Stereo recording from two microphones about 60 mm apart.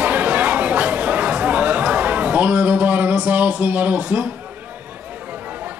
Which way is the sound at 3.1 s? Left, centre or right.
Right.